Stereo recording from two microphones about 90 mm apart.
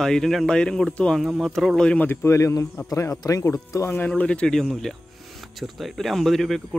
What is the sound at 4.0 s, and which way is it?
Speech, 15° left (ahead or behind).